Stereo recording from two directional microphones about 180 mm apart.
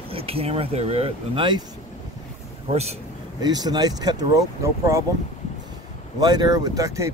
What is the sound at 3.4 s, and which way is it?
Speech, 20° right (ahead or behind).